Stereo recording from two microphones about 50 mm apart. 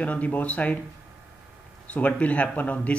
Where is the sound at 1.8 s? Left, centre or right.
Left.